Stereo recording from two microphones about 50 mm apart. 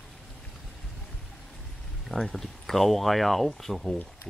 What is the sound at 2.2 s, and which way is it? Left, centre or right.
Speech, centre.